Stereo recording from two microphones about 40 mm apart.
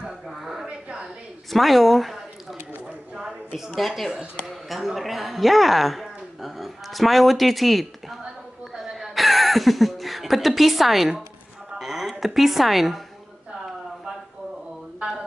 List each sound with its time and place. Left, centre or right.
0.3 s speech: centre
0.7 s a woman's voice: right
1.5 s a woman's voice: centre
3.5 s a woman's voice: centre